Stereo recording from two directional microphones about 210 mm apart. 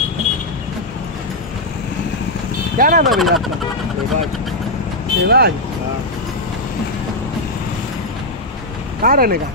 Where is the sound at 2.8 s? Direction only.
40° right (ahead or behind).